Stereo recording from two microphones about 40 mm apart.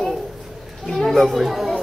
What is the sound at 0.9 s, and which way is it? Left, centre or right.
Children playing, centre.